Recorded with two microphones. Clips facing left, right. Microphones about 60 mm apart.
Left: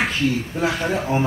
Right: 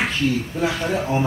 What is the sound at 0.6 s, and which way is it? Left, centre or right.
Speech, centre.